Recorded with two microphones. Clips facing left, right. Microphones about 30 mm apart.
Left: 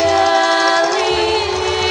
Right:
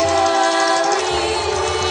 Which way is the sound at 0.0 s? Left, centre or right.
Centre.